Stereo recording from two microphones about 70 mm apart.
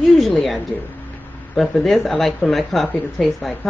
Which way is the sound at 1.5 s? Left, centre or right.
Centre.